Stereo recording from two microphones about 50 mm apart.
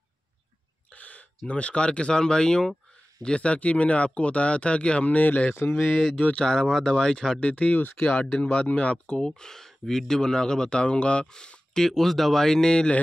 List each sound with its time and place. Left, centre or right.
0.9 s a sound: left
1.5 s speech: left
6.4 s speech: centre
7.3 s speech: left